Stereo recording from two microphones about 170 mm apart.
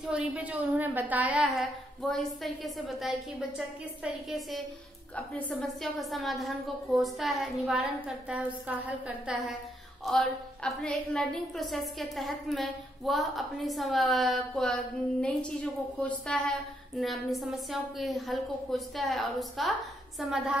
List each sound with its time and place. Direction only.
0.0 s a woman's voice: 5° right (ahead or behind)